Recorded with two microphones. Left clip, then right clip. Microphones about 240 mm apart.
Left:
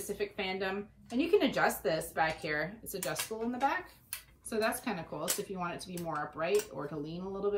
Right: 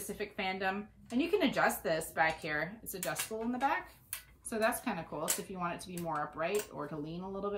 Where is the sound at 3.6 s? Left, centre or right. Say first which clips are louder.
Left 1 dB; centre.